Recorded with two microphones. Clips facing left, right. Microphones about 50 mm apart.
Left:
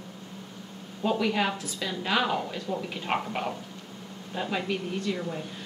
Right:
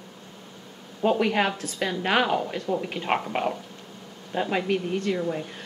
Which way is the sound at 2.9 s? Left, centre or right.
Right.